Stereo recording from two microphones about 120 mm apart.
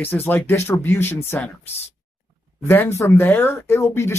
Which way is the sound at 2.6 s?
20° left (ahead or behind).